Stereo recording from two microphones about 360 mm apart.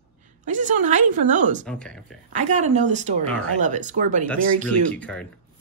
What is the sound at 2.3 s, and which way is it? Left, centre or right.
A woman's voice, centre.